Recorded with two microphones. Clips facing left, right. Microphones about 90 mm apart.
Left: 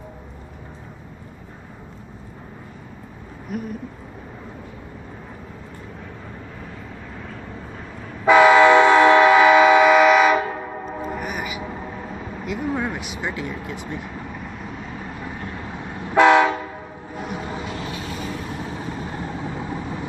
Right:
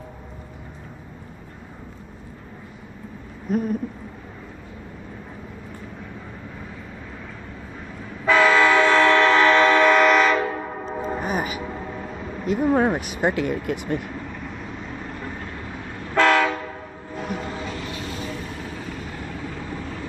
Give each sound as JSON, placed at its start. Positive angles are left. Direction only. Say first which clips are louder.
{"t": 3.5, "sound": "owl", "louder": "right 6 dB", "side_deg": -35}
{"t": 8.3, "sound": "train", "louder": "left 5 dB", "side_deg": 15}
{"t": 11.0, "sound": "train horn", "louder": "right 4 dB", "side_deg": -30}
{"t": 12.4, "sound": "speech", "louder": "right 6 dB", "side_deg": -45}
{"t": 14.0, "sound": "vehicle", "louder": "even", "side_deg": 5}
{"t": 16.0, "sound": "train", "louder": "left 4 dB", "side_deg": 15}
{"t": 17.8, "sound": "vehicle", "louder": "left 1 dB", "side_deg": 10}
{"t": 18.6, "sound": "vehicle", "louder": "left 3 dB", "side_deg": 20}